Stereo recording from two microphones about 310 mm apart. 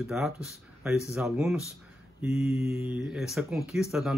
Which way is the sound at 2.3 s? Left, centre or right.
Centre.